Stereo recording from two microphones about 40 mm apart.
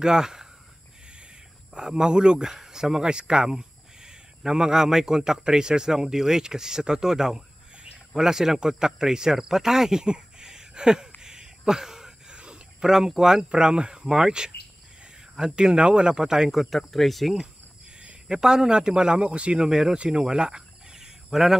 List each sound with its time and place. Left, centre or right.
0.0 s speech: centre
1.7 s speech: centre
11.1 s a sound: centre
12.8 s speech: centre
16.5 s speech: centre
18.4 s speech: centre
20.0 s cricket: right
21.3 s speech: centre